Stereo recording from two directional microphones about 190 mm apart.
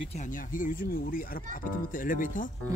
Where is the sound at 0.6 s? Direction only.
45° left (ahead or behind).